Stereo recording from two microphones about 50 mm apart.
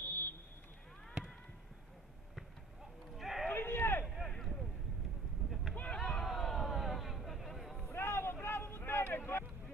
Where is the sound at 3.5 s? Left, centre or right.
Left.